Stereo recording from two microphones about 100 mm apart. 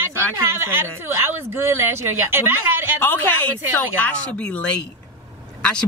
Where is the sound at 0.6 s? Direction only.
25° right (ahead or behind).